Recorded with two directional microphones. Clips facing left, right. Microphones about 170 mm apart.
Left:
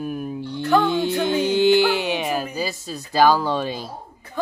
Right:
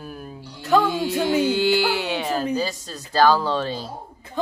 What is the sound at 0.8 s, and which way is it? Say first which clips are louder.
Speech: left 1 dB; 25° left (ahead or behind).